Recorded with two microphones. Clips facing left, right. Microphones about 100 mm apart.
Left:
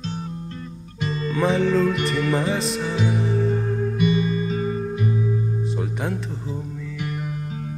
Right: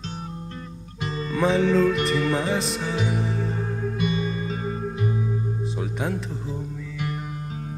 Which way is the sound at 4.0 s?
40° right (ahead or behind).